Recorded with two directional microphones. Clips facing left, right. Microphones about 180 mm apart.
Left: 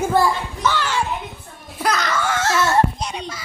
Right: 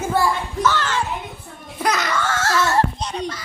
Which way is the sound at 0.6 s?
10° left (ahead or behind).